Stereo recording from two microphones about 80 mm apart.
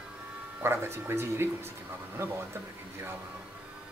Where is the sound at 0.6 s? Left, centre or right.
Right.